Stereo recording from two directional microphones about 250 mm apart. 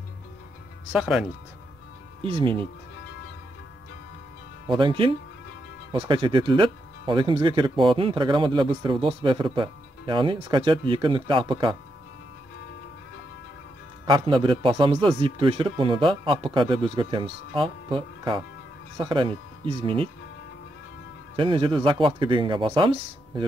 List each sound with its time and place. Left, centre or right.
0.9 s speech: centre
2.2 s speech: right
4.6 s speech: centre
14.0 s speech: centre
21.4 s speech: right